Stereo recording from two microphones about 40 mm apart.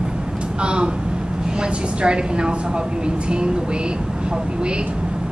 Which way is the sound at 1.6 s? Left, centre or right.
Right.